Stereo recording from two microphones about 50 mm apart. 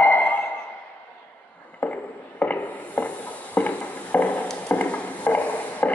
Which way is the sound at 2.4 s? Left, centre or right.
Left.